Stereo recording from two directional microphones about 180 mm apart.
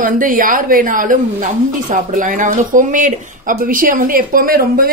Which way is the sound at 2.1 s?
45° right (ahead or behind).